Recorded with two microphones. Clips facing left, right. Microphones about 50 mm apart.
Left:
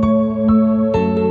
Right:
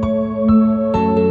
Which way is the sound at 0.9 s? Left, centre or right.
Centre.